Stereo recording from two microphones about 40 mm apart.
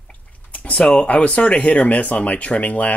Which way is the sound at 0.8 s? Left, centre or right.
Left.